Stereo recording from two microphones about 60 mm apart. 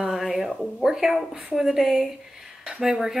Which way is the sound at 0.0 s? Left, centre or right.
Centre.